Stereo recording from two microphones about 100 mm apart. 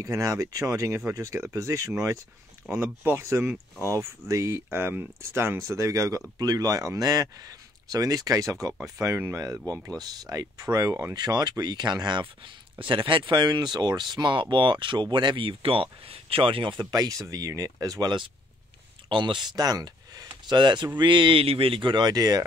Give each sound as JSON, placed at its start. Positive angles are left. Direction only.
{"t": 0.0, "sound": "speech", "side_deg": -35}
{"t": 19.0, "sound": "speech", "side_deg": -55}